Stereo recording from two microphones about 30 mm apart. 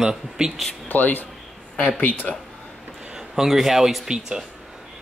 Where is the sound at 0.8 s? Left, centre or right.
Left.